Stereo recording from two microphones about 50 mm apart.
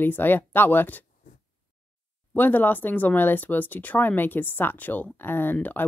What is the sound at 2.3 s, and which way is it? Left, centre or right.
Speech, left.